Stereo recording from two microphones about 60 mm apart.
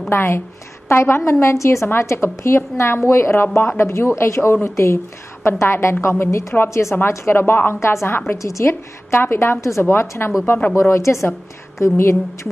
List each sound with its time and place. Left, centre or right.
0.1 s a woman's voice: left
6.7 s a woman's voice: left
7.3 s a woman's voice: left
7.8 s a woman's voice: left
9.6 s a woman's voice: left
9.8 s a woman's voice: left
10.9 s a woman's voice: left